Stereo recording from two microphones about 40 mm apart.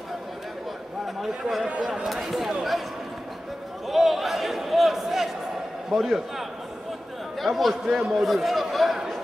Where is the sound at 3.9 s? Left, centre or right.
Centre.